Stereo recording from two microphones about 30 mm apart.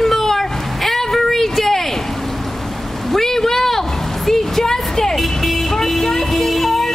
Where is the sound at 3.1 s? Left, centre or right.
Centre.